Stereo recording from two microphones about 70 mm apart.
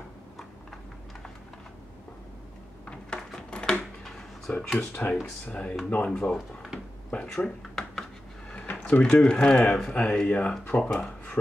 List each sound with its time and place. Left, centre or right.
3.1 s a sound: centre
4.7 s speech: left
6.3 s drawer open or close: centre
7.1 s speech: centre
8.5 s speech: left